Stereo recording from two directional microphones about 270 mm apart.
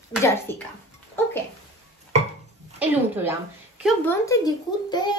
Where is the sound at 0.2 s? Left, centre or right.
Centre.